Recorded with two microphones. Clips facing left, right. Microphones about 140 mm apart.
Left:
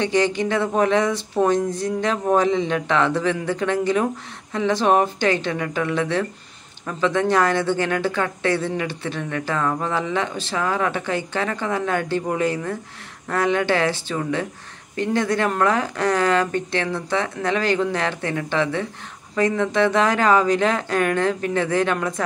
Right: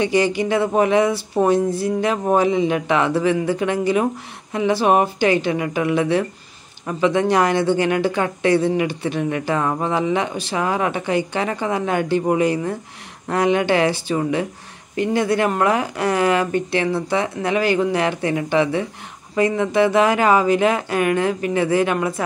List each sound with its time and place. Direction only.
0.0 s speech: 10° right (ahead or behind)